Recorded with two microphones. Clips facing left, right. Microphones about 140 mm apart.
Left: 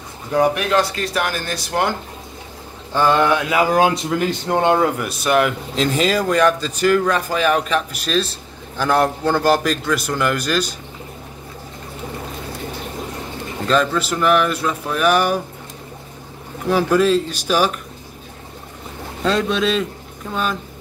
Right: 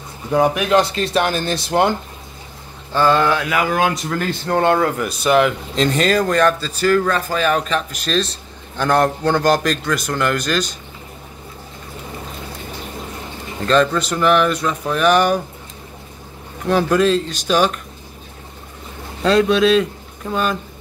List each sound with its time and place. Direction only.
0.3 s speech: 15° right (ahead or behind)
2.9 s speech: 15° left (ahead or behind)
4.2 s speech: 15° left (ahead or behind)
5.0 s a man's voice: centre (ahead or behind)
13.7 s a man's voice: 5° left (ahead or behind)
16.6 s speech: 5° left (ahead or behind)
19.2 s a man's voice: centre (ahead or behind)